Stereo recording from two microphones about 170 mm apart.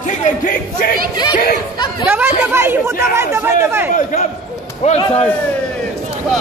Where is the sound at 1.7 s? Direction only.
25° left (ahead or behind).